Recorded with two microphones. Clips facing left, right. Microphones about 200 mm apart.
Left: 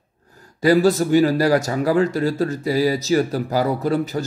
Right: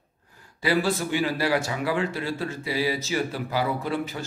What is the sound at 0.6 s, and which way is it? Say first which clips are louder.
Speech: left 9 dB; 40° left (ahead or behind).